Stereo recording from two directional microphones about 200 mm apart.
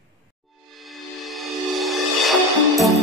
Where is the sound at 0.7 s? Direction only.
Centre (ahead or behind).